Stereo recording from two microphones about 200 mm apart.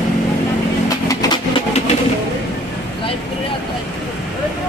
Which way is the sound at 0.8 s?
15° left (ahead or behind).